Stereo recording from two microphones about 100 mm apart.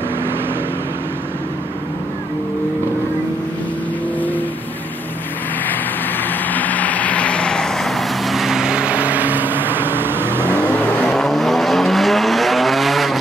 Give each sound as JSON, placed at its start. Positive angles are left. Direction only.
{"t": 6.2, "sound": "vehicle", "side_deg": 15}
{"t": 11.0, "sound": "vehicle", "side_deg": 5}